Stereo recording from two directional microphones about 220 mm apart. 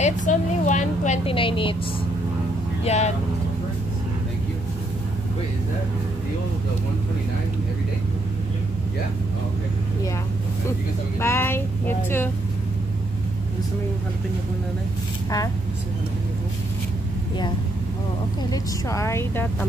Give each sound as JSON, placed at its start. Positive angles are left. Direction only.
{"t": 0.0, "sound": "vehicle", "side_deg": 35}
{"t": 2.8, "sound": "speech", "side_deg": 30}
{"t": 11.1, "sound": "speech", "side_deg": 10}
{"t": 18.5, "sound": "speech", "side_deg": 15}